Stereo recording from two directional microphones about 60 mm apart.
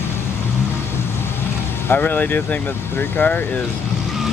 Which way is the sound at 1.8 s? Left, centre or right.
Left.